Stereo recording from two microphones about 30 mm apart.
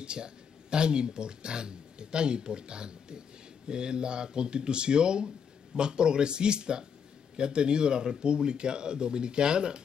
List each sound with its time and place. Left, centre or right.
0.0 s speech: right